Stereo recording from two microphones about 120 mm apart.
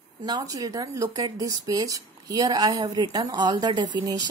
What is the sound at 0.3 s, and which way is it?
Speech, 35° right (ahead or behind).